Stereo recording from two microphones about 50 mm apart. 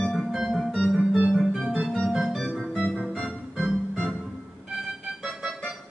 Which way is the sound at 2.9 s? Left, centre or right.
Centre.